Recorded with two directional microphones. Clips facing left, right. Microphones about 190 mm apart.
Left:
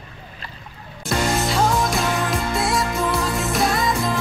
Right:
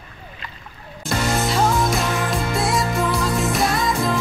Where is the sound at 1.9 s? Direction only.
Centre (ahead or behind).